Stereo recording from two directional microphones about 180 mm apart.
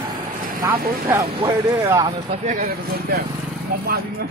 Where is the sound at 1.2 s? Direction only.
25° right (ahead or behind).